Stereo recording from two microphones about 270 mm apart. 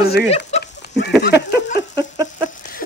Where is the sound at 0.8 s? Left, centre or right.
Left.